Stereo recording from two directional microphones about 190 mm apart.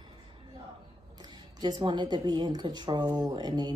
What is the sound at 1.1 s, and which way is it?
Speech, 20° right (ahead or behind).